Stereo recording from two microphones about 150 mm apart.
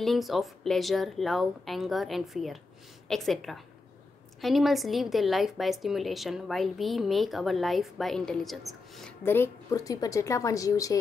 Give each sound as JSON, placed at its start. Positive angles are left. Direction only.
{"t": 0.0, "sound": "a woman's voice", "side_deg": 0}
{"t": 9.2, "sound": "a woman's voice", "side_deg": 15}